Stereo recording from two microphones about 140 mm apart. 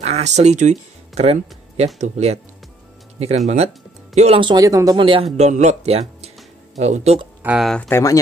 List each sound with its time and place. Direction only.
0.0 s speech: 50° right (ahead or behind)
3.4 s speech: 50° right (ahead or behind)
4.4 s speech: 30° right (ahead or behind)
5.4 s speech: 55° right (ahead or behind)
7.4 s speech: centre (ahead or behind)
7.9 s speech: 25° left (ahead or behind)